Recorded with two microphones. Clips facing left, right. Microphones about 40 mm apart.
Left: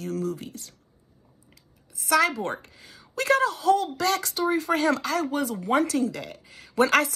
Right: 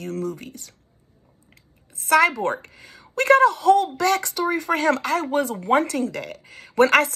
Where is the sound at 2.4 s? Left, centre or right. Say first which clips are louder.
Right 6 dB; right.